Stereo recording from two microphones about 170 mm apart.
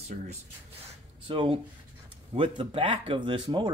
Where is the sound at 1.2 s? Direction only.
30° right (ahead or behind).